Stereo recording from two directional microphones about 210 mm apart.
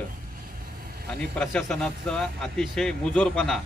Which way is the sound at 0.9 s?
45° right (ahead or behind).